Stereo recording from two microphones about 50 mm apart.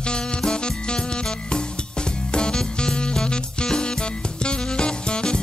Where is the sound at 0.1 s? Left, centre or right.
Centre.